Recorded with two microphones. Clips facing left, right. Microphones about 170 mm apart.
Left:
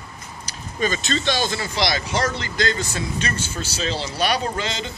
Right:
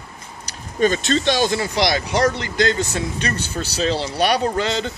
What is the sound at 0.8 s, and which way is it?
Speech, 55° right (ahead or behind).